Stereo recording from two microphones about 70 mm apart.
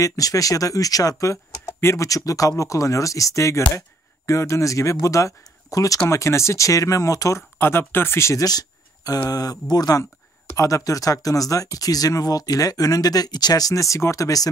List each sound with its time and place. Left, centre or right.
0.0 s speech: left
1.8 s speech: left
2.0 s speech: left
7.5 s speech: left
8.5 s a sound: left
9.3 s speech: left
10.4 s speech: left